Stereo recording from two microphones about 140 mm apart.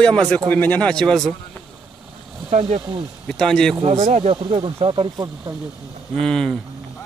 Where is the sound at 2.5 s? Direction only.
45° right (ahead or behind).